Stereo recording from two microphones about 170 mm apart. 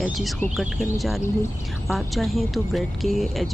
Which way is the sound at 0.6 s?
Centre (ahead or behind).